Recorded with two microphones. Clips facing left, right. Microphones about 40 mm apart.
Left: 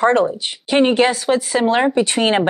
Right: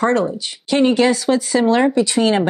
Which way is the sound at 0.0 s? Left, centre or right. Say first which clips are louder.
Left 2 dB; left.